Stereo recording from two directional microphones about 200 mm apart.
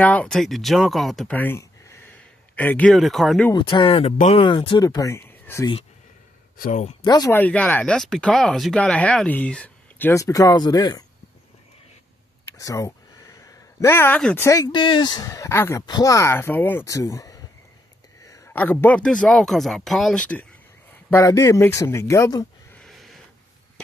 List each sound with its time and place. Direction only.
0.0 s speech: 5° left (ahead or behind)
3.5 s speech: 25° left (ahead or behind)
6.6 s speech: 40° left (ahead or behind)
7.1 s speech: 15° left (ahead or behind)
12.5 s a man's voice: 15° left (ahead or behind)
22.8 s a sound: centre (ahead or behind)